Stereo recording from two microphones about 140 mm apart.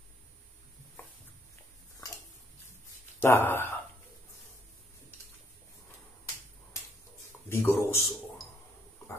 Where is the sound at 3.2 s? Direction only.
15° left (ahead or behind).